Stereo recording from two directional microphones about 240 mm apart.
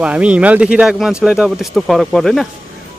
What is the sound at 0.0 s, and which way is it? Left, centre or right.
Speech, centre.